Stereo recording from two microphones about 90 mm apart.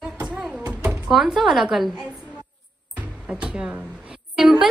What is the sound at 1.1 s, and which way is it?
Speech, 5° right (ahead or behind).